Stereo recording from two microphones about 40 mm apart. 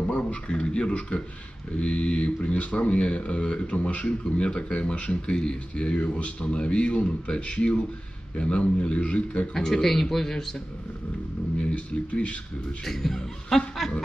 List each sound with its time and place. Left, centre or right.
0.1 s speech: left
5.9 s speech: left
9.5 s speech: centre
11.7 s speech: left
12.8 s speech: centre
13.8 s snicker: centre